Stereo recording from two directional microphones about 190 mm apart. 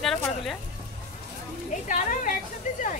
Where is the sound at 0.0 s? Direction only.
Centre (ahead or behind).